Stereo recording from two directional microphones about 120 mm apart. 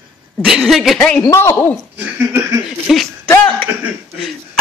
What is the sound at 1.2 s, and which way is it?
Speech, 25° left (ahead or behind).